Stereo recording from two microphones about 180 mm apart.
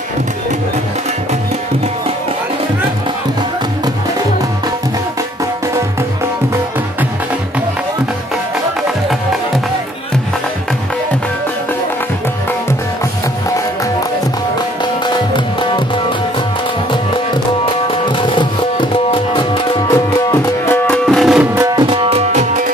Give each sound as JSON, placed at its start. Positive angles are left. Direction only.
{"t": 15.0, "sound": "music", "side_deg": 25}
{"t": 17.6, "sound": "music", "side_deg": 30}
{"t": 21.1, "sound": "music", "side_deg": 0}
{"t": 21.7, "sound": "music", "side_deg": -30}